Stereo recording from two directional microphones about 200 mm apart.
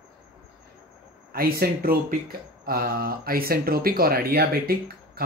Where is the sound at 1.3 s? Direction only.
50° right (ahead or behind).